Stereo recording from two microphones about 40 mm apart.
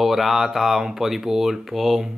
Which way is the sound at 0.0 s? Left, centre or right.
Centre.